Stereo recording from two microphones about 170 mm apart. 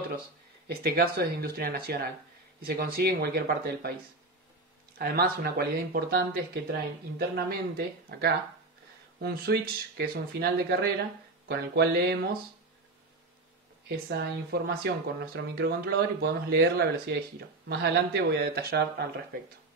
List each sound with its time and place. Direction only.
0.7 s speech: 65° right (ahead or behind)
4.9 s speech: 65° right (ahead or behind)
14.0 s speech: 65° right (ahead or behind)